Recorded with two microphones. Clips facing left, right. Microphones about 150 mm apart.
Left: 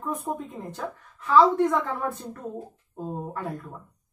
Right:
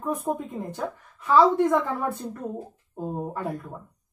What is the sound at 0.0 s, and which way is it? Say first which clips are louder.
Speech: right 3 dB; 15° right (ahead or behind).